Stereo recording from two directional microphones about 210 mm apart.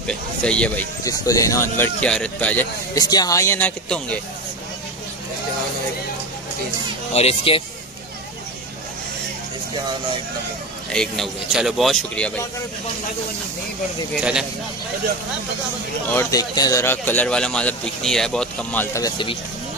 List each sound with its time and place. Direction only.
0.0 s speech: 5° left (ahead or behind)
1.0 s speech: 15° left (ahead or behind)
7.2 s speech: 30° left (ahead or behind)
10.9 s speech: centre (ahead or behind)
16.1 s speech: 15° left (ahead or behind)